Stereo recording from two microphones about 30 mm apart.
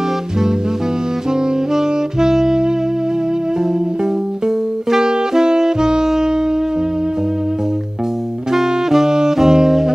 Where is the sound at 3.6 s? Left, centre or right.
Centre.